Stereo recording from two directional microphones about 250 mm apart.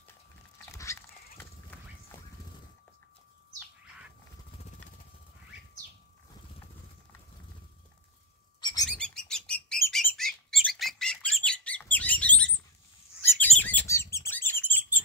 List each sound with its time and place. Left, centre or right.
0.7 s a sound: centre
8.5 s bird: centre
8.8 s bird: centre
13.6 s bird: centre